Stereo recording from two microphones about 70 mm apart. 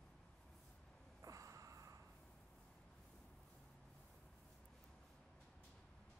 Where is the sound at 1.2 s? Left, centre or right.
Right.